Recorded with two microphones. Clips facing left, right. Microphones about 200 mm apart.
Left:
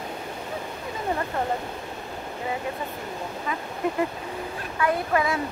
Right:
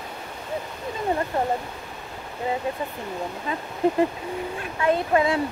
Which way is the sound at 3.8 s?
30° right (ahead or behind).